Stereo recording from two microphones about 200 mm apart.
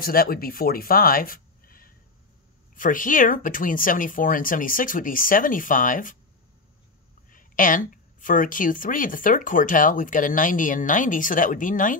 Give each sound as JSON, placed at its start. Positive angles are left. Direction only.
{"t": 0.0, "sound": "speech", "side_deg": 45}
{"t": 7.2, "sound": "a woman's voice", "side_deg": 40}